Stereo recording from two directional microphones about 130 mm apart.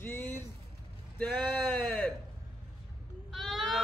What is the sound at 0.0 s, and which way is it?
Vehicle, 20° left (ahead or behind).